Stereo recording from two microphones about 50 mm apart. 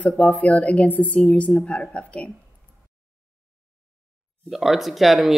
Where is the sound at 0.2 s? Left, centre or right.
Left.